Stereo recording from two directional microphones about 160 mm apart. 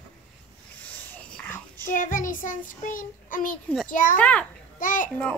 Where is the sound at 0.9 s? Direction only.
10° left (ahead or behind).